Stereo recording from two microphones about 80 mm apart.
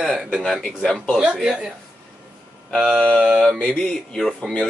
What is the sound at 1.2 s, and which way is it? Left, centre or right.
Speech, centre.